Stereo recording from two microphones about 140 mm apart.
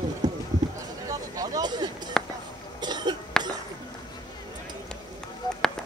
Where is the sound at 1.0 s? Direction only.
25° right (ahead or behind).